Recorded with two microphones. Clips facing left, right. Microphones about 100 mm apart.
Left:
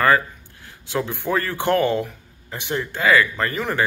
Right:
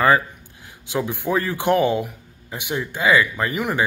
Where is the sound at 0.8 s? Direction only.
15° right (ahead or behind).